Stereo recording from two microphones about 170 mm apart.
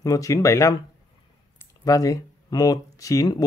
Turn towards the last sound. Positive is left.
turn(degrees=20)  # may be behind; listen again after turning